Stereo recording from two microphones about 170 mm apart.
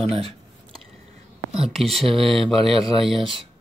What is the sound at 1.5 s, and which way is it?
Speech, centre (ahead or behind).